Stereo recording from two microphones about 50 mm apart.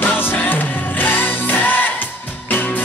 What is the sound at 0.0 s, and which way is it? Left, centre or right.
Music, left.